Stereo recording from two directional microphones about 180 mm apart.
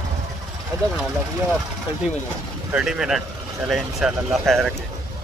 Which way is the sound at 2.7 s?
5° right (ahead or behind).